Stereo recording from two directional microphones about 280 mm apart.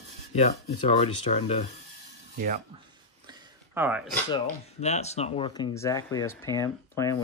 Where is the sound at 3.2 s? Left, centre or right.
Centre.